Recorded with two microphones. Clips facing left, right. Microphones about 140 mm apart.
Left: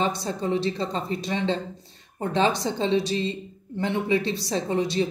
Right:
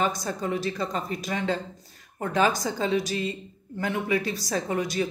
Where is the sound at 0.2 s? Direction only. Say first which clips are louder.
Left 3 dB; 30° left (ahead or behind).